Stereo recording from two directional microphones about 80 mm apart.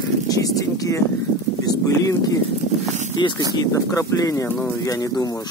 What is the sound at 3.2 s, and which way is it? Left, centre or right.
Speech, left.